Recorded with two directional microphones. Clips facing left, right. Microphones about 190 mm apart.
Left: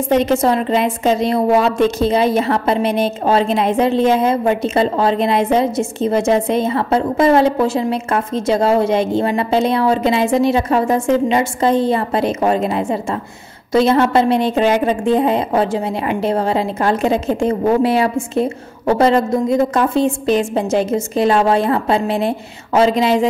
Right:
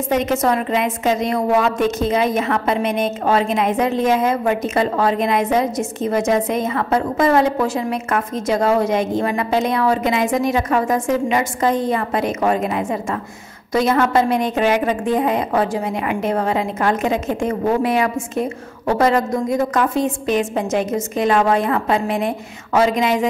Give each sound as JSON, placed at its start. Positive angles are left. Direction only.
{"t": 0.1, "sound": "a woman's voice", "side_deg": 30}